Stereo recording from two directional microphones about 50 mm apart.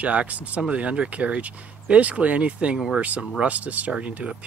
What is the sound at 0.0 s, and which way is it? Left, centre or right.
Speech, right.